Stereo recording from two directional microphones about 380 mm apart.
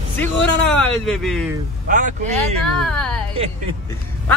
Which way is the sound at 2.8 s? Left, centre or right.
Centre.